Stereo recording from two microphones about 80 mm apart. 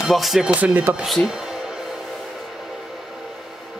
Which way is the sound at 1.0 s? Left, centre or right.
Centre.